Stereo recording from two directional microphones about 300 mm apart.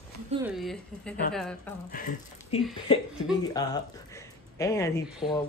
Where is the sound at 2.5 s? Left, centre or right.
Left.